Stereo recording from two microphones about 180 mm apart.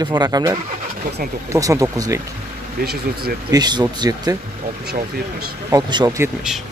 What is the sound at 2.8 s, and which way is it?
Speech, 60° right (ahead or behind).